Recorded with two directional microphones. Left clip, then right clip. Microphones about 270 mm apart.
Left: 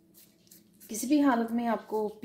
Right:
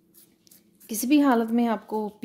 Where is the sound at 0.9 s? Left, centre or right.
Right.